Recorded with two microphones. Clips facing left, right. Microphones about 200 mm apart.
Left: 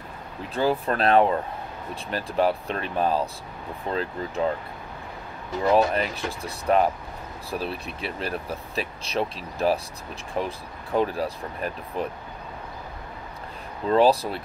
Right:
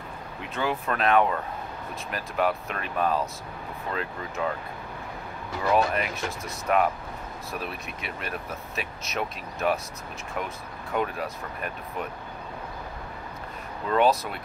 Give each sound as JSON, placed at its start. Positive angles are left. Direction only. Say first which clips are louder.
{"t": 0.6, "sound": "speech", "louder": "left 4 dB", "side_deg": 35}
{"t": 5.7, "sound": "speech", "louder": "left 3 dB", "side_deg": 30}
{"t": 13.8, "sound": "speech", "louder": "left 4 dB", "side_deg": 30}